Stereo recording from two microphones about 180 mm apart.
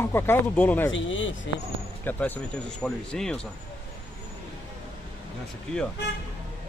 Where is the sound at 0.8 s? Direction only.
90° left.